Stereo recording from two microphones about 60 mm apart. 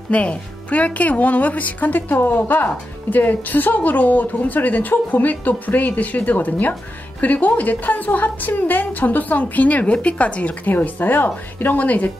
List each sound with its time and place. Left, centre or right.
0.1 s speech: left